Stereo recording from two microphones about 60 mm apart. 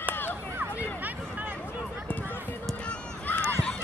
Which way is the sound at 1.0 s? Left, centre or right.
Right.